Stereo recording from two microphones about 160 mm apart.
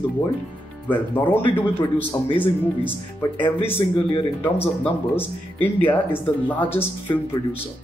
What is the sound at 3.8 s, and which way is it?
Speech, 30° left (ahead or behind).